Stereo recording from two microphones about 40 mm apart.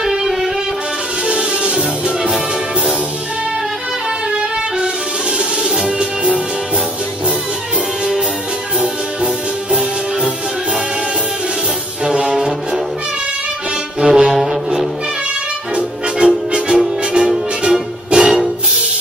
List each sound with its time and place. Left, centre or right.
0.0 s music: centre
1.2 s music: right
4.4 s music: centre
5.9 s music: right
8.7 s music: centre
12.0 s music: right
12.4 s brass instrument: centre
13.9 s brass instrument: centre
15.7 s music: right